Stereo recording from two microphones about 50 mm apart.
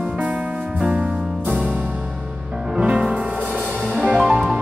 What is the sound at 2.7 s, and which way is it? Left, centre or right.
Music, right.